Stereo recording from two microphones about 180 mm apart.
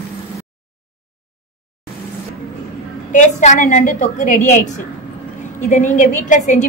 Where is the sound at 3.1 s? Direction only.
45° left (ahead or behind).